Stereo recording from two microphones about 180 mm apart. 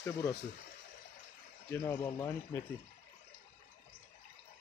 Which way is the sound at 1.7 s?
20° left (ahead or behind).